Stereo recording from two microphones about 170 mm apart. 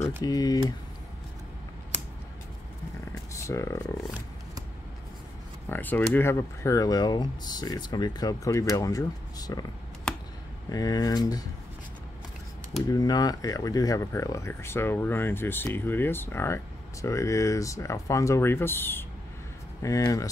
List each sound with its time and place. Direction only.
0.2 s speech: 20° left (ahead or behind)
3.1 s a sound: 15° left (ahead or behind)
5.7 s speech: 10° left (ahead or behind)
10.7 s speech: 20° left (ahead or behind)
12.8 s speech: 25° left (ahead or behind)